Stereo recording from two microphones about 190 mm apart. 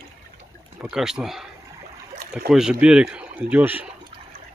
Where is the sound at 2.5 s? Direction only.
5° right (ahead or behind).